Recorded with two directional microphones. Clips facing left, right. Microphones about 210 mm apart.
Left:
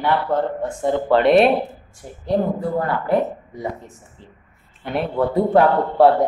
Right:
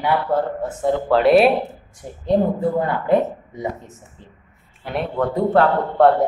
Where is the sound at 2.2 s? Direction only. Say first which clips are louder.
Right 2 dB; 20° right (ahead or behind).